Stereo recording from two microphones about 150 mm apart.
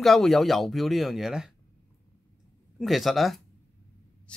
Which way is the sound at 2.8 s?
Centre (ahead or behind).